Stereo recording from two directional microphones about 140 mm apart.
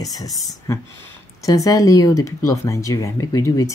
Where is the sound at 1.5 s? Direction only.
25° left (ahead or behind).